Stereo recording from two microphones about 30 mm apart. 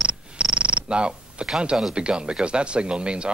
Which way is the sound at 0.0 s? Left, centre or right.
Right.